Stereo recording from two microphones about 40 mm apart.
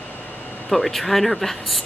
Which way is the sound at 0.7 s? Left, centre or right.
Centre.